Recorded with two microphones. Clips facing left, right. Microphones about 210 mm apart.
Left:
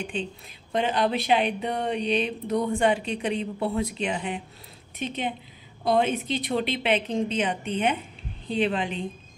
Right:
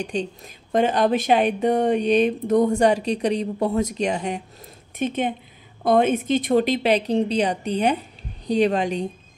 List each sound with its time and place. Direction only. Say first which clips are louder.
0.0 s a woman's voice: right 5 dB; 40° right (ahead or behind)